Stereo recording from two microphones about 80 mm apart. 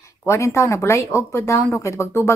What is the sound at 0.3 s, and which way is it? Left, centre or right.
Speech, left.